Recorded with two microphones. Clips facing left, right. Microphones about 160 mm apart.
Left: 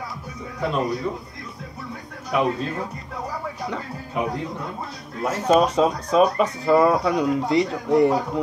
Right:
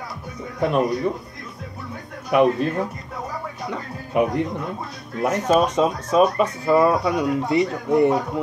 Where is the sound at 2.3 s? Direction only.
60° right (ahead or behind).